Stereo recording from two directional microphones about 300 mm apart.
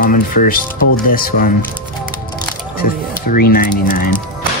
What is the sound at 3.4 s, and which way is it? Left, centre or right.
Speech, left.